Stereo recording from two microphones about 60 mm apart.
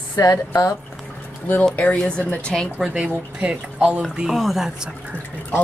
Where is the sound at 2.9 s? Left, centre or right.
Right.